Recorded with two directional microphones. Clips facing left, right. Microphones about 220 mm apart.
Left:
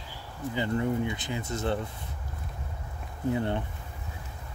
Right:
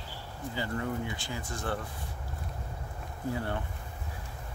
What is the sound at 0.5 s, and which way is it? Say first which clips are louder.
Speech: left 6 dB; 20° left (ahead or behind).